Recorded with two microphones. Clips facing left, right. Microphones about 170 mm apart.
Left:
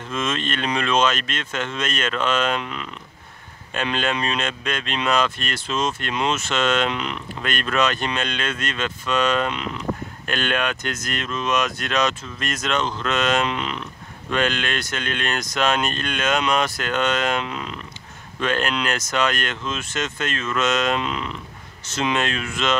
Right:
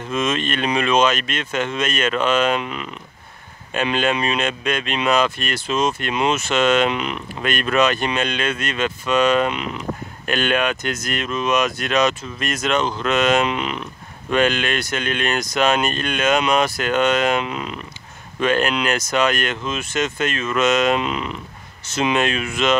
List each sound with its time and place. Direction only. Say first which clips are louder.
0.1 s speech: right 4 dB; 10° right (ahead or behind)